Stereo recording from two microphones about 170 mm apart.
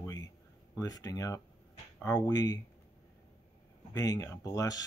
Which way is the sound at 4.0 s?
20° left (ahead or behind).